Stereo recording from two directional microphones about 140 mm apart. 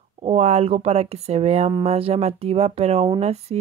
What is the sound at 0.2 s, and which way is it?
Speech, 50° right (ahead or behind).